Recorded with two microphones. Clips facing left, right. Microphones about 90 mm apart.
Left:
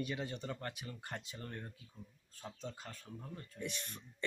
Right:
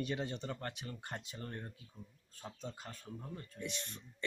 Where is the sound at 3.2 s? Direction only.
25° right (ahead or behind).